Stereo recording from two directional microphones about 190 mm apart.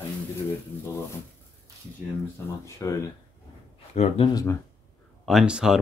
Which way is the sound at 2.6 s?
15° left (ahead or behind).